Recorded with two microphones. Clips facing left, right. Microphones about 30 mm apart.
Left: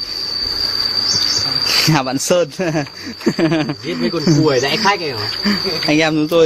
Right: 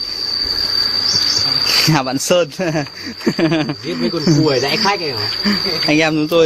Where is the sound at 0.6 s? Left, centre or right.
Centre.